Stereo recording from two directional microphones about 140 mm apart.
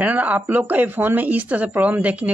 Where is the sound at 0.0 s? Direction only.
10° right (ahead or behind).